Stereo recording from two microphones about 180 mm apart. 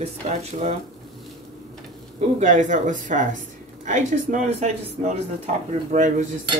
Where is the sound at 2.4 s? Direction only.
45° right (ahead or behind).